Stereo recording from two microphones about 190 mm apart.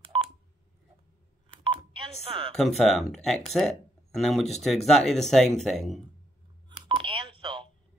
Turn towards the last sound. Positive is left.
turn(degrees=-25)  # may be behind; listen again after turning